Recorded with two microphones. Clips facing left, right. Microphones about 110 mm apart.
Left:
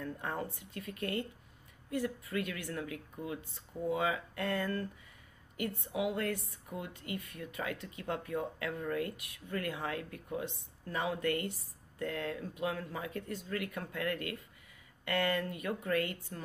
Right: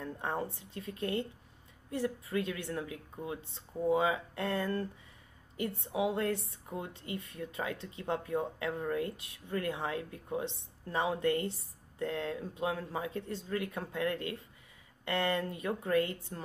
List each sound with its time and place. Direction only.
0.0 s a woman's voice: 25° right (ahead or behind)